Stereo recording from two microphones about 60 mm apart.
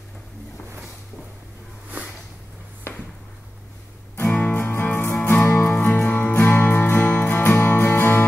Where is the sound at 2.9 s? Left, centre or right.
Left.